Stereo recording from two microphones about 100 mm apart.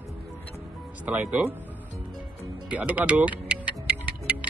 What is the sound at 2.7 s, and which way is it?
Speech, 15° right (ahead or behind).